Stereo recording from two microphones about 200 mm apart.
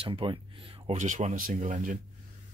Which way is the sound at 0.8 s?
40° right (ahead or behind).